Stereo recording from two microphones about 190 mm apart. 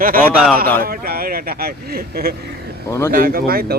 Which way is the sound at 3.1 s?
50° right (ahead or behind).